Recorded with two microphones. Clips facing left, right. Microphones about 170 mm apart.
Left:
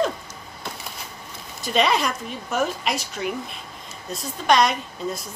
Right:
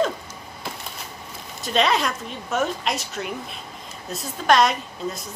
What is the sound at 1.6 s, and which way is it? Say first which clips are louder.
A woman's voice: even; centre (ahead or behind).